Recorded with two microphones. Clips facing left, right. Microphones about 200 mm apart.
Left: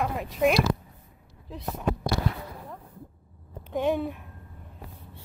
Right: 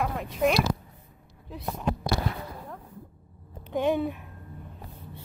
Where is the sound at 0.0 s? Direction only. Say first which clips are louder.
Left 1 dB; centre (ahead or behind).